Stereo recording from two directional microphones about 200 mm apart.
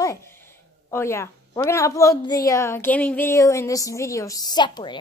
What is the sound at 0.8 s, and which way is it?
A woman's voice, 15° left (ahead or behind).